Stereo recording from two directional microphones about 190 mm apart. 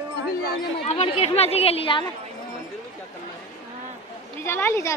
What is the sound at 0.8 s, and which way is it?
Speech, 35° left (ahead or behind).